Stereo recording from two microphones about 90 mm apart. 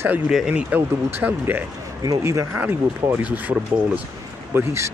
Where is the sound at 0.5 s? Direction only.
15° right (ahead or behind).